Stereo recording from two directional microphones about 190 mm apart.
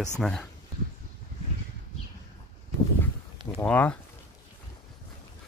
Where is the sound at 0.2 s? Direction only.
5° left (ahead or behind).